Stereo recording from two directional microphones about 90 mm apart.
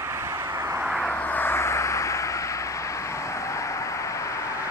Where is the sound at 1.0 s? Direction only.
15° left (ahead or behind); by 4.4 s 35° left (ahead or behind).